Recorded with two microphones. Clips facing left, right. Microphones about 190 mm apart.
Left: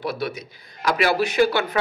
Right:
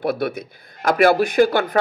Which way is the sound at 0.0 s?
55° right (ahead or behind).